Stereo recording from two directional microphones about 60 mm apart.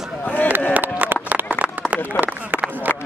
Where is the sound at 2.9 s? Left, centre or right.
Right.